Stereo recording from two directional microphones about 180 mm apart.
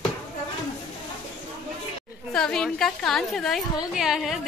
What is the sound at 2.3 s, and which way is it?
A woman's voice, 5° left (ahead or behind).